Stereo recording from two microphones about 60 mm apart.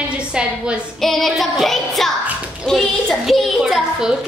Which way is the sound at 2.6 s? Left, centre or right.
Centre.